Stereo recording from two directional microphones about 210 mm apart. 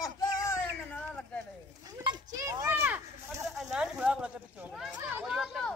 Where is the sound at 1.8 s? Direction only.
20° right (ahead or behind).